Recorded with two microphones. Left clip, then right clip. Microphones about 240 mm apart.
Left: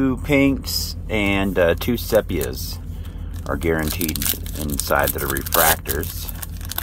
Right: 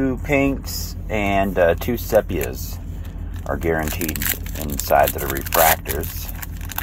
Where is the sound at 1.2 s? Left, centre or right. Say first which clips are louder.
Right 1 dB; left.